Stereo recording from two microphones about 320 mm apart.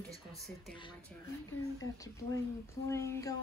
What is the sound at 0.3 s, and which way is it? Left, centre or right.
A child's voice, centre.